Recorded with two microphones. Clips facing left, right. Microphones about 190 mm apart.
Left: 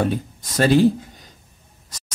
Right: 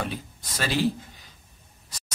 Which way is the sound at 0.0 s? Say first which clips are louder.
Left 10 dB; 50° left (ahead or behind).